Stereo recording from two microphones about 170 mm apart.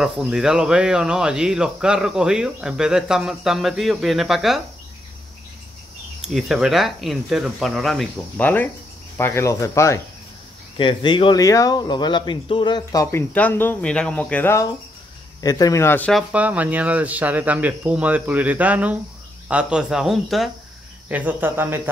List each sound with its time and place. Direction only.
0.0 s speech: 5° right (ahead or behind)
6.2 s speech: 5° right (ahead or behind); by 9.9 s 15° left (ahead or behind)
10.8 s speech: 30° left (ahead or behind); by 16.1 s 15° left (ahead or behind)
16.1 s speech: 5° right (ahead or behind)